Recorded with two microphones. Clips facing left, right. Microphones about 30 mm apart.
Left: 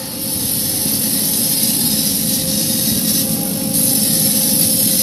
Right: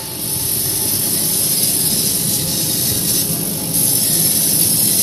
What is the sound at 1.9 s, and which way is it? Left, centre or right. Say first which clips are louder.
Vehicle: left 2 dB; left.